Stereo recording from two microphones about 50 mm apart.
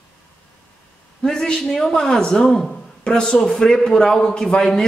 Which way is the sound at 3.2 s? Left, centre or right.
Centre.